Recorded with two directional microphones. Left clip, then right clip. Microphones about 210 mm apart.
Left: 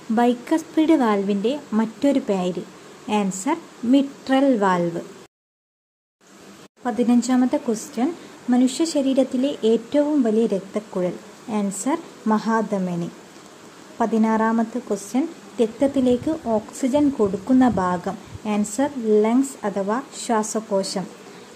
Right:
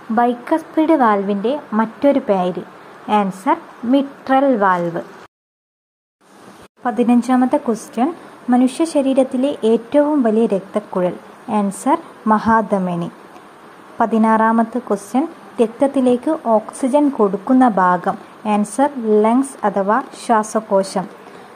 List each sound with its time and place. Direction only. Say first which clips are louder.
0.1 s a woman's voice: right 4 dB; 15° left (ahead or behind)
6.8 s a woman's voice: right 5 dB; 5° right (ahead or behind)